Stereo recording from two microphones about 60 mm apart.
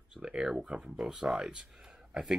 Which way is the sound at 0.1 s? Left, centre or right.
Centre.